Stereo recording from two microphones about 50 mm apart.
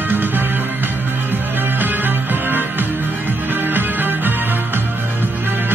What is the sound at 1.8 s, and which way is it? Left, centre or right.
Music, right.